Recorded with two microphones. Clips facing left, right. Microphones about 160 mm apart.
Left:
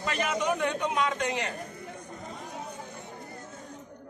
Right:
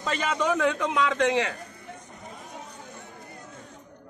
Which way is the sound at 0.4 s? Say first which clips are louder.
Right 6 dB; 90° right.